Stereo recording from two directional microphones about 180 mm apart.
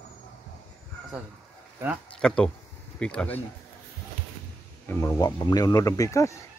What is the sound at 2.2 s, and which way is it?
Speech, 5° left (ahead or behind).